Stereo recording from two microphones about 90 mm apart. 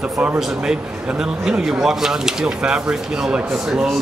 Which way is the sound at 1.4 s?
5° right (ahead or behind).